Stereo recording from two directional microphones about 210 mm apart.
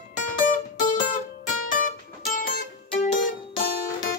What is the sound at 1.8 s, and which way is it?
Music, 40° left (ahead or behind).